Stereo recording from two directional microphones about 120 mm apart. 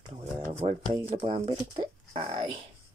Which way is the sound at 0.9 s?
45° right (ahead or behind).